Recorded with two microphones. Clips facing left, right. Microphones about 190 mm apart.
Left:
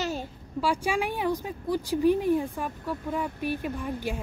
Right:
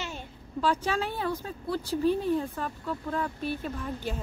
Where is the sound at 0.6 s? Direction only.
10° left (ahead or behind).